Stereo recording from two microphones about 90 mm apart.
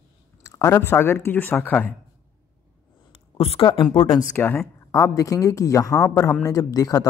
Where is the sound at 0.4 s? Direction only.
40° left (ahead or behind).